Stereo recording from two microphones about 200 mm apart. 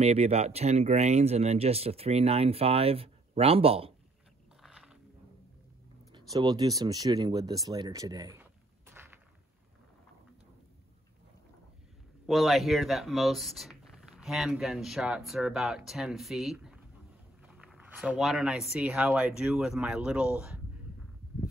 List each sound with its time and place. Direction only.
0.0 s speech: 30° right (ahead or behind)
4.6 s a sound: centre (ahead or behind)
6.1 s speech: 20° right (ahead or behind)
12.3 s speech: centre (ahead or behind)